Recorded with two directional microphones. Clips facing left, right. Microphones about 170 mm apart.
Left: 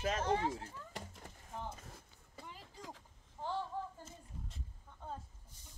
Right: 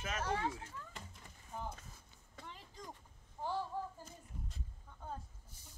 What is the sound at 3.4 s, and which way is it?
Child singing, 10° right (ahead or behind).